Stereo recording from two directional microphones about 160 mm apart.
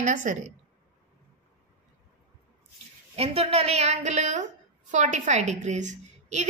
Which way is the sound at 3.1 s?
40° right (ahead or behind).